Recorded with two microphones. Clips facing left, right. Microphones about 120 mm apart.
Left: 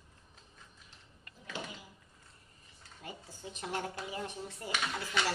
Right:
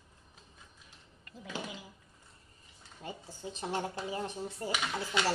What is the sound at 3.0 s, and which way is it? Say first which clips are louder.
Speech: right 4 dB; 30° right (ahead or behind).